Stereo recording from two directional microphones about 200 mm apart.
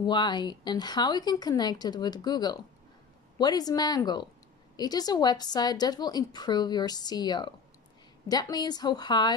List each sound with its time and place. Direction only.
0.0 s a woman's voice: 20° left (ahead or behind)